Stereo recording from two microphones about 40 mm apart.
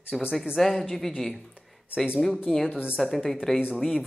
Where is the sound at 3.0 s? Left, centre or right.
Centre.